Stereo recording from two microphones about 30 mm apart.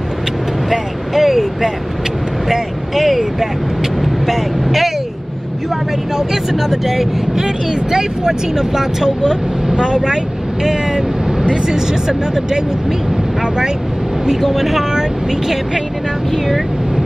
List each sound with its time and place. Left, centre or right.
0.7 s speech: centre
4.0 s speech: centre
7.3 s speech: centre
14.4 s speech: centre